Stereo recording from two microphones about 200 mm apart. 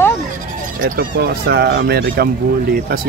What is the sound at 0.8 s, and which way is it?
Speech, 50° right (ahead or behind).